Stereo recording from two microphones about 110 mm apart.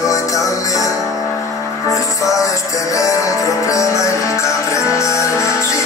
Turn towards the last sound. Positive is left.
turn(degrees=25)  # may be behind; listen again after turning